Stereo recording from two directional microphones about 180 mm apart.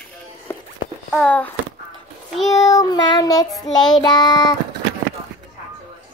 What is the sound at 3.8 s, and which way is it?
Child singing, 25° left (ahead or behind).